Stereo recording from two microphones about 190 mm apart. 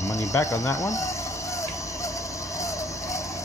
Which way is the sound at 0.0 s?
15° left (ahead or behind).